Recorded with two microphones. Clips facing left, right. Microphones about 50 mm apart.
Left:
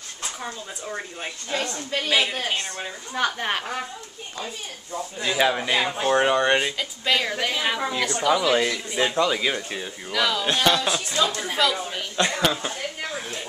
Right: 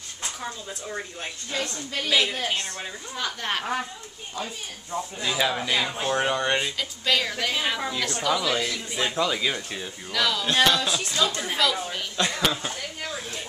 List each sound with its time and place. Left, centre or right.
0.4 s speech: centre
1.5 s a woman's voice: left
2.0 s speech: centre
3.2 s speech: left
5.2 s speech: centre
10.6 s a woman's voice: left
11.1 s speech: centre
13.0 s a sound: left